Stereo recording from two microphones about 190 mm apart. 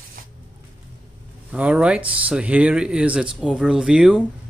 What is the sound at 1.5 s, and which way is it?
Speech, 5° right (ahead or behind).